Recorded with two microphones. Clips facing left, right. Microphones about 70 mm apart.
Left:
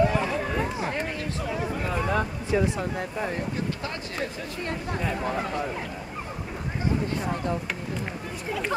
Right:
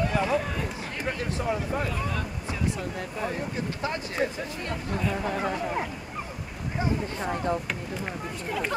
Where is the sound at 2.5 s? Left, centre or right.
Left.